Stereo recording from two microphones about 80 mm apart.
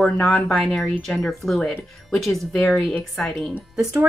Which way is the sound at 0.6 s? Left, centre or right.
Centre.